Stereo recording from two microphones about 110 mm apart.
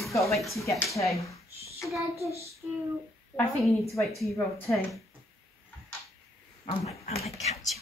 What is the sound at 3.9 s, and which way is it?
Speech, centre (ahead or behind).